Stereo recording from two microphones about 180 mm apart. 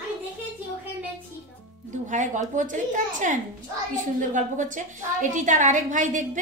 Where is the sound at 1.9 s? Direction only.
45° right (ahead or behind).